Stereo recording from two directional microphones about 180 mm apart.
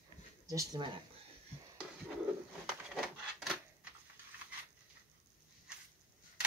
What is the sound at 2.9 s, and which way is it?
Wood, centre (ahead or behind).